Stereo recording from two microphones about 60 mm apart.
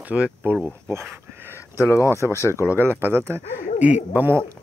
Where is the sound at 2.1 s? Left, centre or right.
Right.